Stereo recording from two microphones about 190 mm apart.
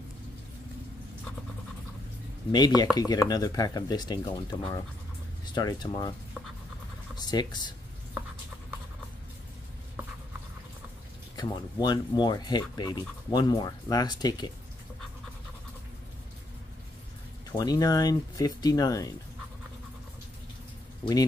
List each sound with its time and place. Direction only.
2.5 s speech: 20° left (ahead or behind)
7.2 s speech: 20° left (ahead or behind)
11.3 s speech: 20° left (ahead or behind)
17.5 s speech: 20° left (ahead or behind)
21.0 s speech: 20° left (ahead or behind)